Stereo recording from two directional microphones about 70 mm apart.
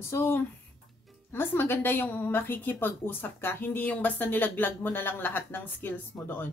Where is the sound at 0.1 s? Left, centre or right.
Left.